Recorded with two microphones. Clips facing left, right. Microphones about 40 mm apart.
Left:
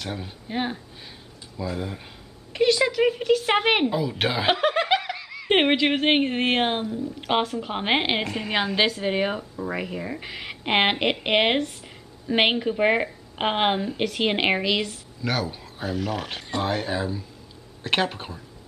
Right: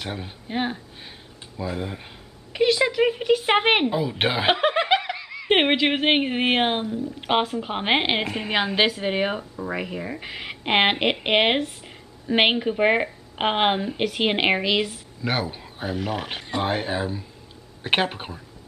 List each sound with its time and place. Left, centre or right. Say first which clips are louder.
0.0 s speech: right 1 dB; centre